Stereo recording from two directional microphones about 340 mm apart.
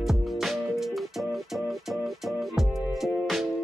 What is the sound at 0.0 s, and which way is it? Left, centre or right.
Music, centre.